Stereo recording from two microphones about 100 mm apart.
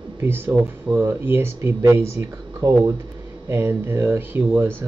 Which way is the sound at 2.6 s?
35° right (ahead or behind).